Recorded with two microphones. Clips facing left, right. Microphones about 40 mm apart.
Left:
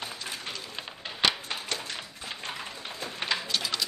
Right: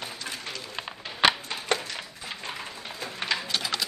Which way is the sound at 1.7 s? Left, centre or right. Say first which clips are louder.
Right 10 dB; right.